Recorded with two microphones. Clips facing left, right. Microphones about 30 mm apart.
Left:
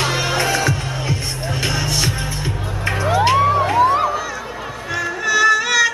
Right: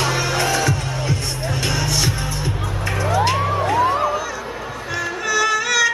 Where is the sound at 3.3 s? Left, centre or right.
Left.